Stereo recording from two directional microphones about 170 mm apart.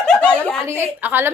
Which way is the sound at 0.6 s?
10° right (ahead or behind).